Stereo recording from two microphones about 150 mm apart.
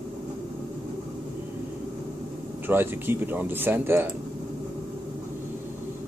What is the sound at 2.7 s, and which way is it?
Speech, 15° right (ahead or behind).